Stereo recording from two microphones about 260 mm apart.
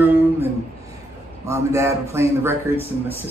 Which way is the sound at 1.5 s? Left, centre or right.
Centre.